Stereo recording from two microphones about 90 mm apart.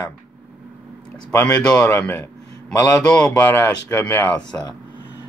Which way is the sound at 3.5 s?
25° left (ahead or behind).